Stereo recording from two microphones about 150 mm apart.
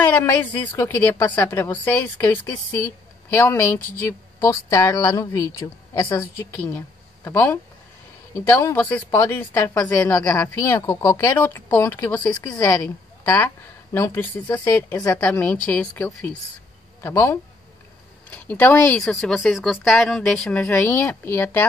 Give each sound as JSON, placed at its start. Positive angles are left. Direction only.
{"t": 0.0, "sound": "a woman's voice", "side_deg": 10}
{"t": 6.1, "sound": "a woman's voice", "side_deg": 15}
{"t": 12.4, "sound": "speech", "side_deg": 25}
{"t": 12.8, "sound": "a woman's voice", "side_deg": 10}
{"t": 20.7, "sound": "a woman's voice", "side_deg": 15}